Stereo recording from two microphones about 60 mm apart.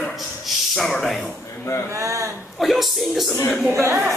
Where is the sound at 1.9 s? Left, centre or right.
Right.